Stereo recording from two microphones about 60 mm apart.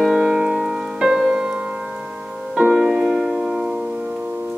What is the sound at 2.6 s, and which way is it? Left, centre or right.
Music, centre.